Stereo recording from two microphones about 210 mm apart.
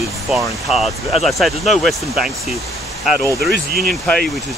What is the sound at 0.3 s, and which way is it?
Speech, centre (ahead or behind).